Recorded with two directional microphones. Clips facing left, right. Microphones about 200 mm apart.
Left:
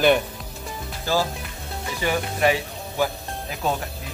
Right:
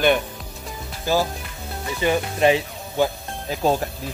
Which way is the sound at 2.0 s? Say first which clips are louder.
Right 3 dB; 20° right (ahead or behind).